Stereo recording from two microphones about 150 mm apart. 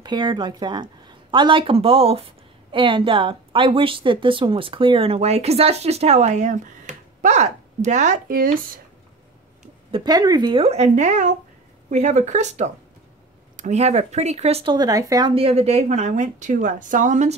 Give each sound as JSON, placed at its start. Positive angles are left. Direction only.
{"t": 0.0, "sound": "a woman's voice", "side_deg": -30}
{"t": 9.8, "sound": "speech", "side_deg": -30}
{"t": 10.6, "sound": "speech", "side_deg": -45}
{"t": 15.3, "sound": "speech", "side_deg": -40}